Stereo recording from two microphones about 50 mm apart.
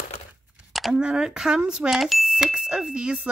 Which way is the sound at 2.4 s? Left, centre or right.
Centre.